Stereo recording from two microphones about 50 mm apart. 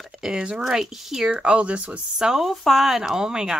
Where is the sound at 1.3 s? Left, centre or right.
Right.